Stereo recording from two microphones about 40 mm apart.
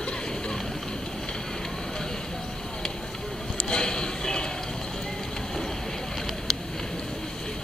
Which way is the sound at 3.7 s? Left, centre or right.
Left.